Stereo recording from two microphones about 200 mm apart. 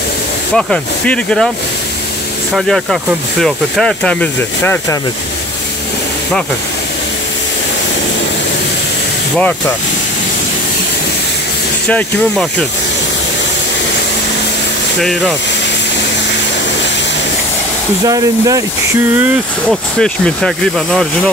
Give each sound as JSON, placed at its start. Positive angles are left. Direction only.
{"t": 0.6, "sound": "speech", "side_deg": 5}
{"t": 2.5, "sound": "speech", "side_deg": 0}
{"t": 11.9, "sound": "speech", "side_deg": 5}
{"t": 15.0, "sound": "speech", "side_deg": 0}
{"t": 18.0, "sound": "speech", "side_deg": -15}
{"t": 19.1, "sound": "speech", "side_deg": -5}